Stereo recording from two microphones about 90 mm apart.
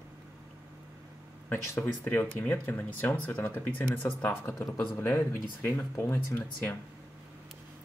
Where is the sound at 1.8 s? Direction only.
20° left (ahead or behind).